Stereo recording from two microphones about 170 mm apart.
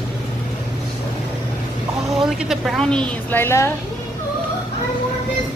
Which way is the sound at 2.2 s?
5° right (ahead or behind).